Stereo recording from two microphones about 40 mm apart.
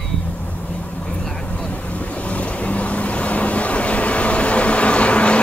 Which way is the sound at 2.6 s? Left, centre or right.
Left.